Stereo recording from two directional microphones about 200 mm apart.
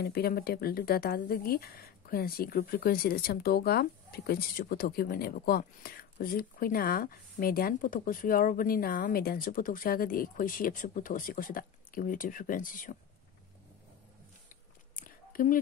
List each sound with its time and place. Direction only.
0.0 s speech: 50° left (ahead or behind)
14.5 s biting: 45° left (ahead or behind)